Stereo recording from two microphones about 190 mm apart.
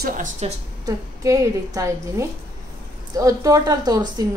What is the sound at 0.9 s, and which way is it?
A woman's voice, 15° right (ahead or behind).